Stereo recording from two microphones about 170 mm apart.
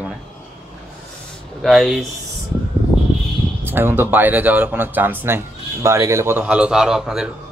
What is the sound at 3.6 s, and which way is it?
Speech, 10° right (ahead or behind).